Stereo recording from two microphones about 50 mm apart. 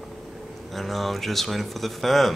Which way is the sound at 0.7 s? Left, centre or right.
Centre.